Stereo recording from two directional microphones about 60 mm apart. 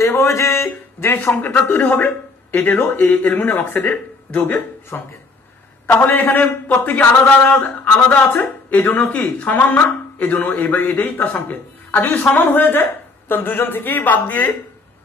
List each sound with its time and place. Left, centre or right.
0.0 s speech: left
1.1 s a man's voice: left
4.9 s speech: left